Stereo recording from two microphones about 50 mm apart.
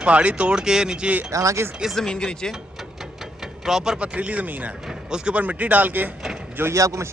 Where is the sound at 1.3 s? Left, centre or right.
Right.